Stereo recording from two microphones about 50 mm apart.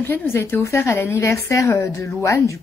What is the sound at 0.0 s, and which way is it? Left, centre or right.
Speech, left.